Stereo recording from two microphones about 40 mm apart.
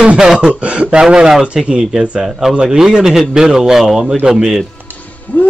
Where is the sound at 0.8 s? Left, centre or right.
Centre.